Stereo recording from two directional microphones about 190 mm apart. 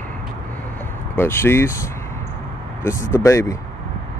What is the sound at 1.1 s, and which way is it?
Speech, 10° left (ahead or behind).